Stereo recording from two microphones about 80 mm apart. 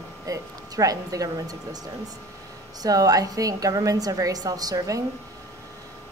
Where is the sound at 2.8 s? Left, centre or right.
Right.